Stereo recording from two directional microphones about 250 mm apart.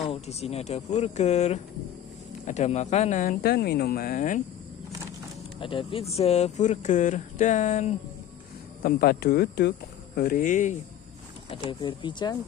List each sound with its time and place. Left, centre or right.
0.1 s speech: left
5.6 s speech: left
11.8 s speech: centre